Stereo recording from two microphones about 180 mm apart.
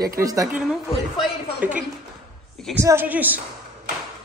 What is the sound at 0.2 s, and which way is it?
Speech, 20° right (ahead or behind).